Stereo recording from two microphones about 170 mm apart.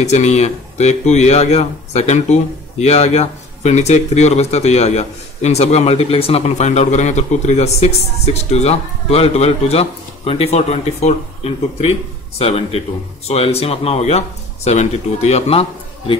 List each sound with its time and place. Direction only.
0.0 s speech: 40° left (ahead or behind)